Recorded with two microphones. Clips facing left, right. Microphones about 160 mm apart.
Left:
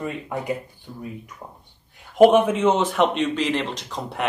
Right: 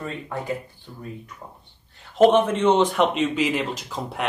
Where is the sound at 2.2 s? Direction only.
10° left (ahead or behind).